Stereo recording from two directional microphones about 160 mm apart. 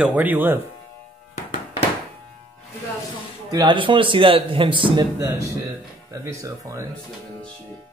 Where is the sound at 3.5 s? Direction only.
25° right (ahead or behind).